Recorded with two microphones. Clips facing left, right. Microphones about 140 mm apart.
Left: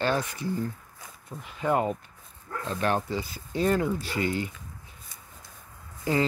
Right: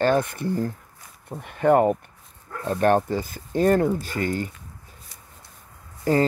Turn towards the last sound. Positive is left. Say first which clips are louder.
# right 5 dB
turn(degrees=-45)  # may be behind; listen again after turning